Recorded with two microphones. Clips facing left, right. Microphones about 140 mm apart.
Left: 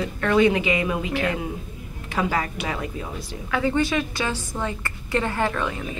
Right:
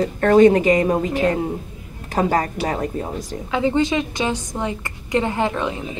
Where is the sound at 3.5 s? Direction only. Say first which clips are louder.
Right 3 dB; 20° right (ahead or behind).